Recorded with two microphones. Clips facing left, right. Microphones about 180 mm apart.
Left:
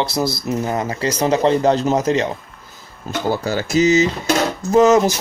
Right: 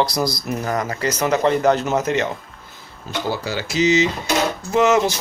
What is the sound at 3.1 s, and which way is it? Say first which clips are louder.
Speech: left 4 dB; 45° left (ahead or behind).